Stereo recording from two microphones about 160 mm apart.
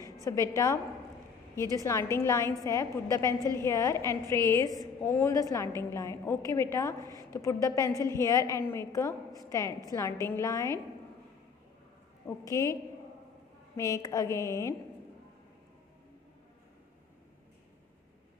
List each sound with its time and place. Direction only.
0.0 s a sound: 20° left (ahead or behind)
1.8 s a woman's voice: 15° left (ahead or behind)
3.3 s a woman's voice: 25° right (ahead or behind)
3.6 s a woman's voice: 20° left (ahead or behind)
12.3 s a woman's voice: 20° left (ahead or behind)
13.7 s a woman's voice: 20° left (ahead or behind)